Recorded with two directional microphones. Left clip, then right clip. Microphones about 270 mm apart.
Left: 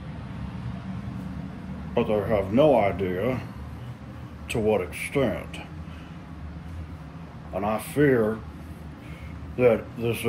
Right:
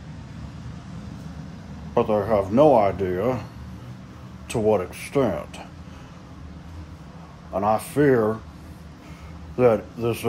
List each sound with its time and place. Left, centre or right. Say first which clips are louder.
2.0 s speech: right 3 dB; centre
4.5 s speech: right 3 dB; centre
7.5 s speech: right 5 dB; centre
9.6 s speech: right 2 dB; centre